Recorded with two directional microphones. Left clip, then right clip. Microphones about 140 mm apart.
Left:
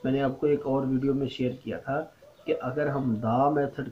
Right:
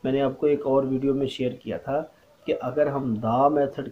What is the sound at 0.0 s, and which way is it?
Speech, 25° right (ahead or behind).